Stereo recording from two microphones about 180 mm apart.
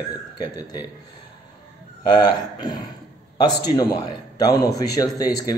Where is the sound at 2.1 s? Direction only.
20° left (ahead or behind).